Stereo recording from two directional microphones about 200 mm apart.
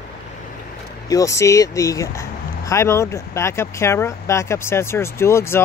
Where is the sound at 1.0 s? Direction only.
15° left (ahead or behind).